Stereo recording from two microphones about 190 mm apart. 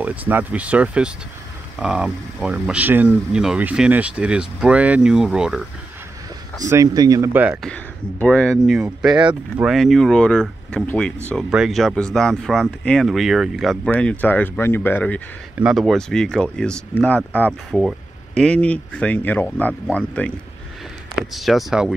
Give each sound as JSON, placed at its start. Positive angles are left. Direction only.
{"t": 0.0, "sound": "speech", "side_deg": -10}
{"t": 6.7, "sound": "speech", "side_deg": -15}
{"t": 7.6, "sound": "speech", "side_deg": 5}
{"t": 15.5, "sound": "speech", "side_deg": -5}